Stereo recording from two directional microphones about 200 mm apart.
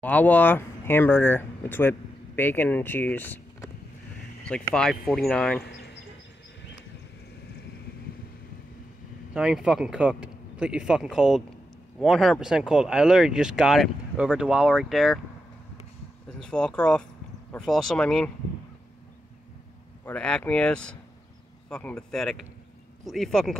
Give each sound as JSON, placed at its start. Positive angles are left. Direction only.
{"t": 0.0, "sound": "speech", "side_deg": 10}
{"t": 5.7, "sound": "a sound", "side_deg": 55}
{"t": 9.3, "sound": "speech", "side_deg": -5}
{"t": 16.3, "sound": "speech", "side_deg": 5}
{"t": 20.1, "sound": "speech", "side_deg": 5}